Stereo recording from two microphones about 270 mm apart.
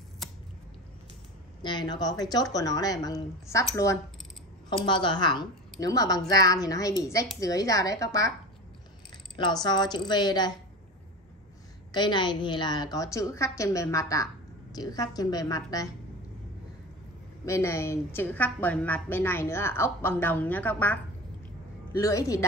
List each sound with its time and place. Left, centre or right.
1.6 s a woman's voice: centre
9.4 s a woman's voice: centre
11.9 s a woman's voice: centre
17.5 s a woman's voice: centre
22.0 s a woman's voice: centre